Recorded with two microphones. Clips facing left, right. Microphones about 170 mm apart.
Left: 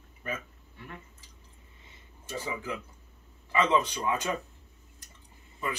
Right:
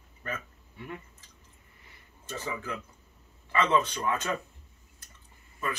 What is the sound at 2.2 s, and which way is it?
Speech, 10° left (ahead or behind).